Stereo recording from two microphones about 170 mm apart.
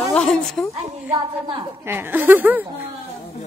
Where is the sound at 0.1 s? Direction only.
5° left (ahead or behind).